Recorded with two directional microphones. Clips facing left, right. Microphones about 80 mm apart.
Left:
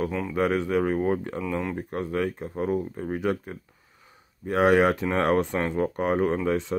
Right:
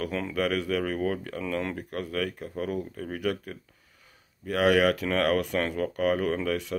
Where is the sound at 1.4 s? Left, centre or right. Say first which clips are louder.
Left 2 dB; centre.